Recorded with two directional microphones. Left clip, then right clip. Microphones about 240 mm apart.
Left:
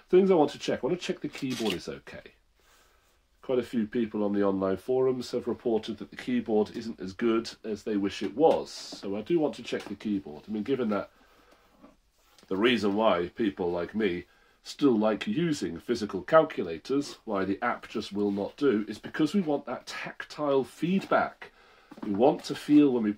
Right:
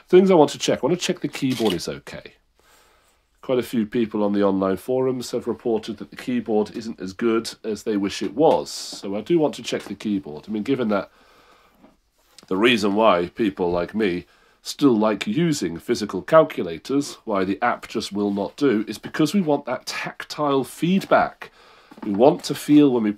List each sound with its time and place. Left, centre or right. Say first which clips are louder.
0.1 s speech: right 8 dB; right
3.4 s speech: right 6 dB; right
12.4 s speech: right 7 dB; right